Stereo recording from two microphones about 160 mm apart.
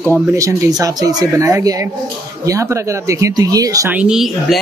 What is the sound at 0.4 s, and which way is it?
Speech, 20° right (ahead or behind).